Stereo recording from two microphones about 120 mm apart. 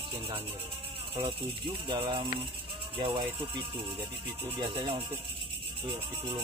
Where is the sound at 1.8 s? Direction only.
40° right (ahead or behind).